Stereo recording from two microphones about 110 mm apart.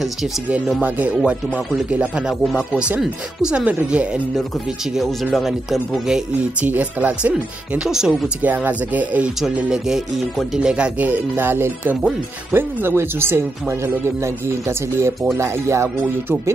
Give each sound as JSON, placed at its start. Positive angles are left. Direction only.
{"t": 0.0, "sound": "speech", "side_deg": 0}
{"t": 6.6, "sound": "speech", "side_deg": -15}